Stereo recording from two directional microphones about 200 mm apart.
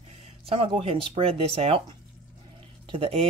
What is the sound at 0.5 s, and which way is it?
Speech, 25° right (ahead or behind).